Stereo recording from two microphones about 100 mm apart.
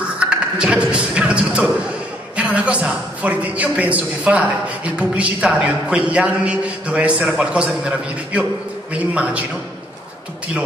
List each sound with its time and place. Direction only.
0.2 s a man's voice: 10° right (ahead or behind)